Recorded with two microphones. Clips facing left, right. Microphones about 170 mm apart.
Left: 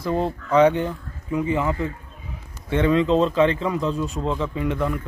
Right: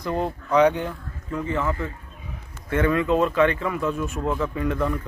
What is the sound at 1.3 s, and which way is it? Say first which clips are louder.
Speech: left 3 dB; 15° left (ahead or behind).